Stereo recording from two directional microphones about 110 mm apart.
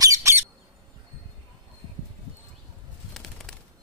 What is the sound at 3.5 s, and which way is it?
Machine gun, centre (ahead or behind).